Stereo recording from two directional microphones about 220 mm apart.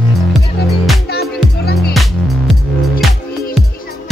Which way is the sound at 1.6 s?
45° left (ahead or behind).